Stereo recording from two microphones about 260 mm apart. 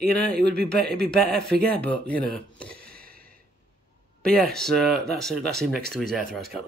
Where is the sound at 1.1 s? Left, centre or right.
Centre.